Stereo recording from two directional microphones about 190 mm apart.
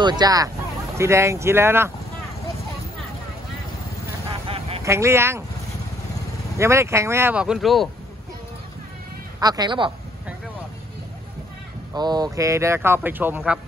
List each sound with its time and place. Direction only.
0.0 s speech: 20° right (ahead or behind)
4.5 s a sound: 30° right (ahead or behind)
4.8 s speech: 15° right (ahead or behind)
6.6 s speech: 15° right (ahead or behind)
9.4 s speech: 20° right (ahead or behind)
11.9 s speech: 20° right (ahead or behind)